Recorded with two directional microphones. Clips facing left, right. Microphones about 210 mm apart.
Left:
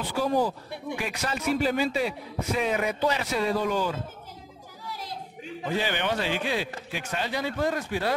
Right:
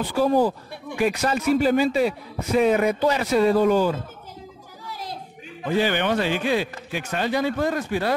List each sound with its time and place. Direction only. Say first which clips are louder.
0.1 s a man's voice: right 5 dB; 45° right (ahead or behind)
5.8 s a man's voice: right 7 dB; 55° right (ahead or behind)